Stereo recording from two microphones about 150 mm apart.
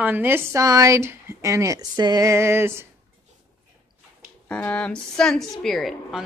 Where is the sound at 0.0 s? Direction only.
10° right (ahead or behind).